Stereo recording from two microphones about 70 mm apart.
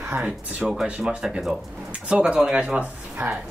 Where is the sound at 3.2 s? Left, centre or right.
Right.